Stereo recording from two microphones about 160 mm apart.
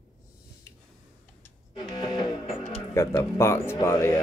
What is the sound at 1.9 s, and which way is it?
Music, 25° left (ahead or behind).